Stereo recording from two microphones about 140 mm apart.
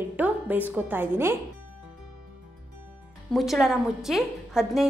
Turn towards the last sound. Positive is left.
turn(degrees=0)  # may be behind; listen again after turning